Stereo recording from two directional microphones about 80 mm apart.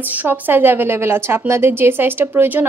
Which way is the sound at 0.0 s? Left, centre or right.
Right.